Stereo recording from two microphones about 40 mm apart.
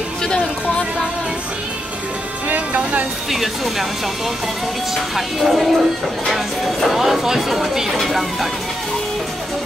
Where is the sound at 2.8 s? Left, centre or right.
Right.